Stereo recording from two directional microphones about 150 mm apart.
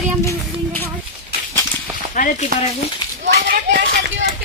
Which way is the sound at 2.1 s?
60° left (ahead or behind).